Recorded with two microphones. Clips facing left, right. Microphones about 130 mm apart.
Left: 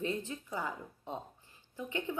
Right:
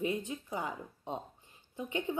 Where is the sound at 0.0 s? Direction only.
15° right (ahead or behind).